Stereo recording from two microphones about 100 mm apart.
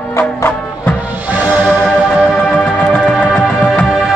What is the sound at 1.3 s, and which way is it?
Music, 20° right (ahead or behind).